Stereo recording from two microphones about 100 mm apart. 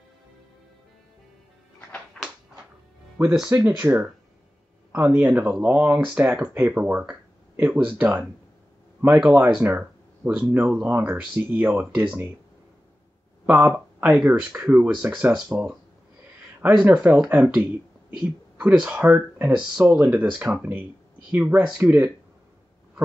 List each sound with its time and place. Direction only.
3.3 s speech: 5° right (ahead or behind)
3.8 s speech: 20° right (ahead or behind)
13.5 s speech: 15° right (ahead or behind)
16.8 s speech: 15° right (ahead or behind)